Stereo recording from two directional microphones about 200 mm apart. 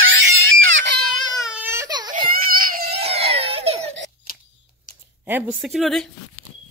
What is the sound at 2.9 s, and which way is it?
Baby cry, 30° right (ahead or behind).